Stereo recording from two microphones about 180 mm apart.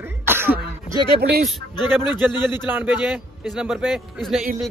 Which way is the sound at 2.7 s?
10° right (ahead or behind).